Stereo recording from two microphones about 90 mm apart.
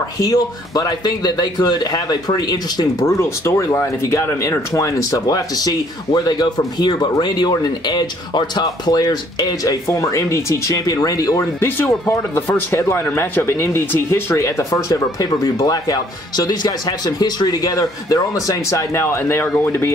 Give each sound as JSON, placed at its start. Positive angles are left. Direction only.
{"t": 0.2, "sound": "speech", "side_deg": 45}
{"t": 3.1, "sound": "speech", "side_deg": 30}
{"t": 11.6, "sound": "speech", "side_deg": 30}